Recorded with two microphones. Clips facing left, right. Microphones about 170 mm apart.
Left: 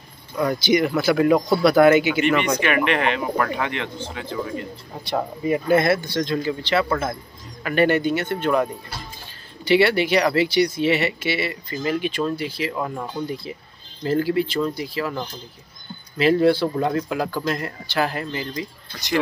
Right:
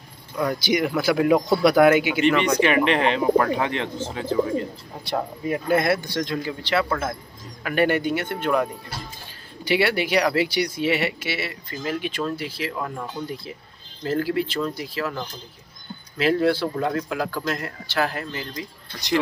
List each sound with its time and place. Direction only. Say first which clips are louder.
0.6 s speech: left 5 dB; 5° right (ahead or behind)
2.1 s speech: even; 5° left (ahead or behind)
2.6 s speech: right 1 dB; 30° right (ahead or behind)
5.1 s speech: left 3 dB; 5° left (ahead or behind)
5.9 s speech: left 2 dB; 10° right (ahead or behind)
9.7 s speech: left 4 dB; 10° right (ahead or behind)
16.2 s speech: left 3 dB; centre (ahead or behind)